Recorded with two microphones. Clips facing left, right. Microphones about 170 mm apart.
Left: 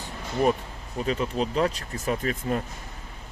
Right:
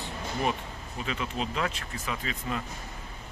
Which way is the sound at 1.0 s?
40° left (ahead or behind).